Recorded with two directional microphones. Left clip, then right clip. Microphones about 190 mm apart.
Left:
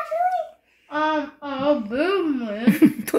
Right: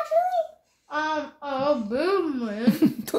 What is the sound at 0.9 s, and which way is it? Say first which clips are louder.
A child's voice: left 4 dB; 15° right (ahead or behind).